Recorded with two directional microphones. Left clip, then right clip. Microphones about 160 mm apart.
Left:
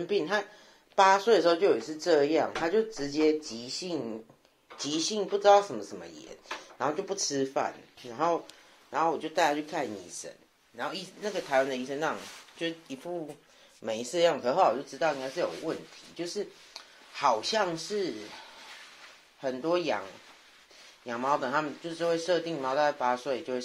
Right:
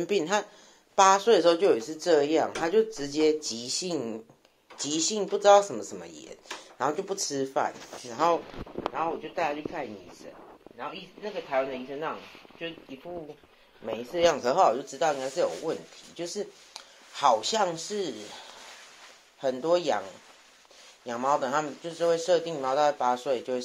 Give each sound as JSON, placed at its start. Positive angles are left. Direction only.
{"t": 0.2, "sound": "a woman's voice", "side_deg": -25}
{"t": 7.2, "sound": "a woman's voice", "side_deg": -10}
{"t": 8.9, "sound": "speech", "side_deg": 15}
{"t": 14.1, "sound": "speech", "side_deg": 0}
{"t": 14.4, "sound": "a woman's voice", "side_deg": -15}
{"t": 14.9, "sound": "speech", "side_deg": -30}
{"t": 16.2, "sound": "a sound", "side_deg": -20}
{"t": 19.4, "sound": "speech", "side_deg": -30}
{"t": 21.0, "sound": "speech", "side_deg": -20}